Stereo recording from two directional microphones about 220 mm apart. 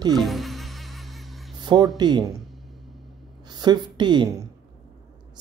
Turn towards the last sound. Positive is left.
turn(degrees=-20)  # may be behind; listen again after turning